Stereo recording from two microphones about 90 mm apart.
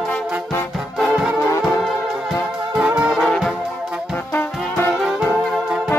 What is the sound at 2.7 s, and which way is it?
Music, 10° right (ahead or behind).